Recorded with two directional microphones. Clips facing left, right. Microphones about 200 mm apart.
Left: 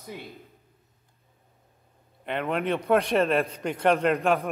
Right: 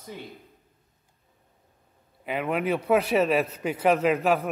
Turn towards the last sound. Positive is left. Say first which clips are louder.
# right 1 dB
turn(degrees=0)  # may be behind; listen again after turning